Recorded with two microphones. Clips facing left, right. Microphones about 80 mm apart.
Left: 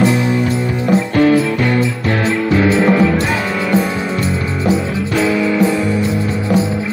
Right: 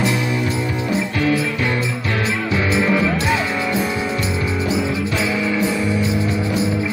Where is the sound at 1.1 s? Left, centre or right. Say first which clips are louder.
Left 9 dB; left.